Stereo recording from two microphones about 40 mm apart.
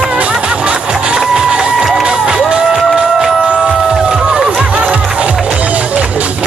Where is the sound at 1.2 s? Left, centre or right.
Centre.